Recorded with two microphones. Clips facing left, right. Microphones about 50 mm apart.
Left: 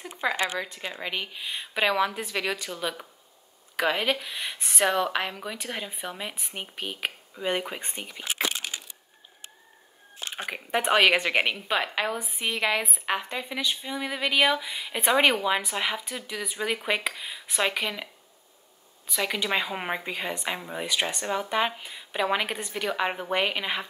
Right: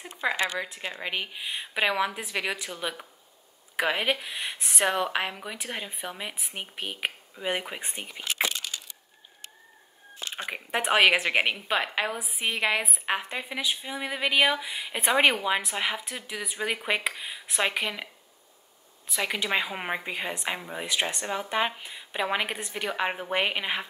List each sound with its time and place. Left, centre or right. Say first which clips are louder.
0.2 s a woman's voice: even; centre
10.3 s speech: left 2 dB; centre
19.0 s a woman's voice: left 1 dB; centre